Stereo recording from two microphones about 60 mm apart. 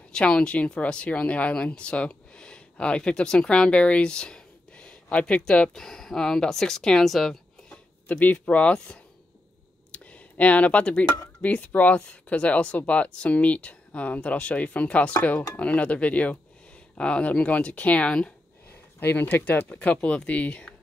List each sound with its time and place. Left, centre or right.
0.1 s speech: centre
8.1 s speech: left
9.9 s a sound: left
11.4 s speech: left
18.9 s speech: left
19.7 s speech: left